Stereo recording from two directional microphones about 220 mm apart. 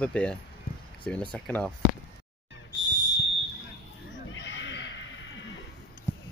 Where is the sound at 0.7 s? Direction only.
45° left (ahead or behind).